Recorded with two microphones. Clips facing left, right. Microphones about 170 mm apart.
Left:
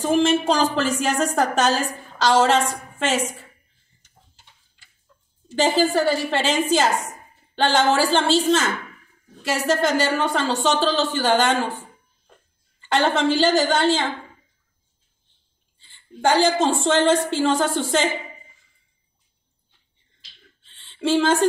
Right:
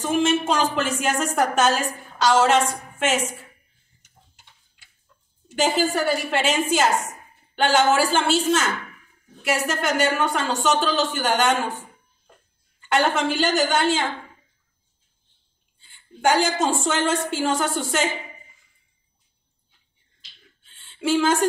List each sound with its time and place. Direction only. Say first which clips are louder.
0.0 s a woman's voice: left 2 dB; 35° left (ahead or behind)
5.6 s a woman's voice: left 3 dB; 30° left (ahead or behind)
7.9 s a woman's voice: left 1 dB; 30° left (ahead or behind)
12.8 s a woman's voice: left 2 dB; 30° left (ahead or behind)
15.8 s a woman's voice: even; 30° left (ahead or behind)
20.6 s a sound: left 2 dB; 30° left (ahead or behind)